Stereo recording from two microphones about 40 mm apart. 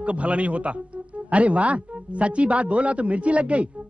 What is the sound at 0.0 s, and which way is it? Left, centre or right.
A man's voice, right.